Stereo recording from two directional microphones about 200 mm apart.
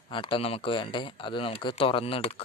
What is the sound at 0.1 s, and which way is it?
Speech, 25° left (ahead or behind).